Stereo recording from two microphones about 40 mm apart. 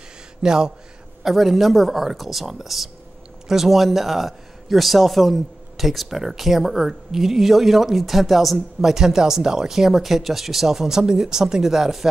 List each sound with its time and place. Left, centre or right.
0.4 s speech: centre
1.2 s a man's voice: centre